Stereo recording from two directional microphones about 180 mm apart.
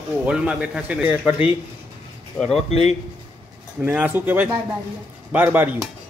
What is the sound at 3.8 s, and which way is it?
A man's voice, 10° right (ahead or behind).